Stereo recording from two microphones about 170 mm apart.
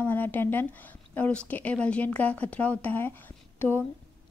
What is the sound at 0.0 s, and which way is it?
A woman's voice, 10° left (ahead or behind).